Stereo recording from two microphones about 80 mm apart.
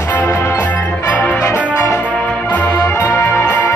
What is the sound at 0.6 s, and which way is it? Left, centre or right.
Music, centre.